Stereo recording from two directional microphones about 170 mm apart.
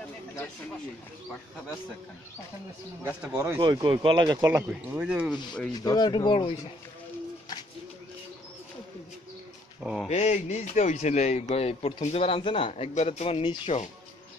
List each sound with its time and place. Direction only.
3.0 s speech: 10° right (ahead or behind)
3.5 s speech: 25° right (ahead or behind)
4.5 s speech: 10° right (ahead or behind)
5.8 s speech: 25° left (ahead or behind)
10.0 s speech: 40° left (ahead or behind)